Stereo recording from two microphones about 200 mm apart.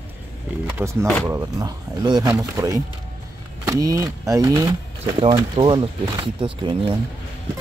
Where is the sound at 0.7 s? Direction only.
15° right (ahead or behind).